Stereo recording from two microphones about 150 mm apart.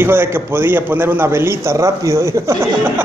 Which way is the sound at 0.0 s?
15° right (ahead or behind).